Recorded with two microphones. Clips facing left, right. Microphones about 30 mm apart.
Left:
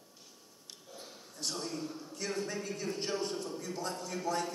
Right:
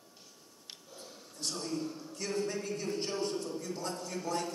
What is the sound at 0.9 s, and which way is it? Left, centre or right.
A man's voice, centre.